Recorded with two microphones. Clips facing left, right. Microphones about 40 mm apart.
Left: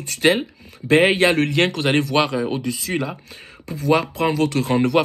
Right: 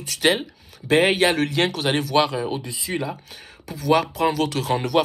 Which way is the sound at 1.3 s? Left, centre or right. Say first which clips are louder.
Left 3 dB; left.